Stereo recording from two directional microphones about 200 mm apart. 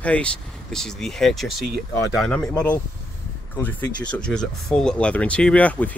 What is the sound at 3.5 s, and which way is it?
Speech, 10° left (ahead or behind).